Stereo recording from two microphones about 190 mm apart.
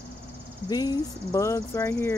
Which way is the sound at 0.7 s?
20° left (ahead or behind).